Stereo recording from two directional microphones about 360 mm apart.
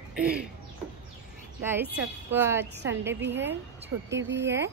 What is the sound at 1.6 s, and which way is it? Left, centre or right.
A woman's voice, centre.